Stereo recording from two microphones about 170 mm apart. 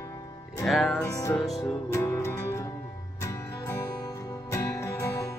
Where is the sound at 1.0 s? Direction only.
15° left (ahead or behind).